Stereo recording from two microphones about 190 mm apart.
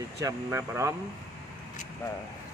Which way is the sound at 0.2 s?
15° right (ahead or behind).